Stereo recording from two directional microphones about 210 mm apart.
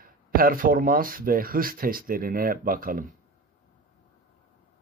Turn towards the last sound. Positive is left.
turn(degrees=-45)  # may be behind; listen again after turning